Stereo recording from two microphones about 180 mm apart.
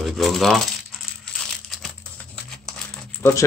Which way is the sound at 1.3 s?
Centre (ahead or behind).